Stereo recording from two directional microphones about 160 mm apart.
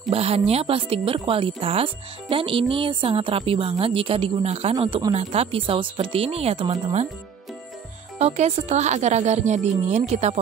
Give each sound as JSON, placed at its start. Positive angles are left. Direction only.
{"t": 0.1, "sound": "speech", "side_deg": -40}
{"t": 8.2, "sound": "speech", "side_deg": -45}